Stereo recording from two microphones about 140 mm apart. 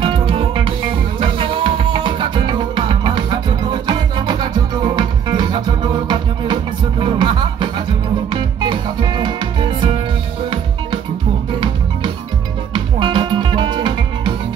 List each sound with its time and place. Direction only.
0.0 s music: 35° right (ahead or behind)
12.7 s music: 35° right (ahead or behind)